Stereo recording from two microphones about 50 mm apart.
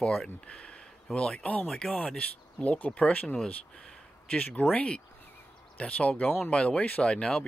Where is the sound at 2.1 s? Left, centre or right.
Left.